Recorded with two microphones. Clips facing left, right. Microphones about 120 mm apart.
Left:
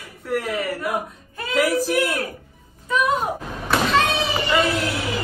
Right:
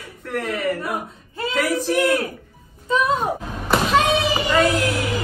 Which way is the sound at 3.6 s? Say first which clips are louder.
Right 2 dB; 5° right (ahead or behind).